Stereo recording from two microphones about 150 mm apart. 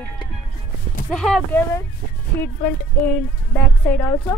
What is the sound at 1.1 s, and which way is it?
Speech, centre (ahead or behind).